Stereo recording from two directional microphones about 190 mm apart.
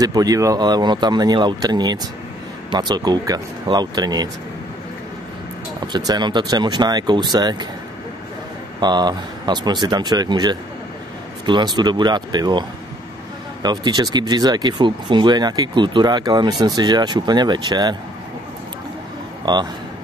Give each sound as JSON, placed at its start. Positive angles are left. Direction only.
{"t": 0.0, "sound": "speech", "side_deg": -20}
{"t": 5.8, "sound": "speech", "side_deg": -20}
{"t": 8.8, "sound": "speech", "side_deg": -20}
{"t": 19.4, "sound": "speech", "side_deg": -20}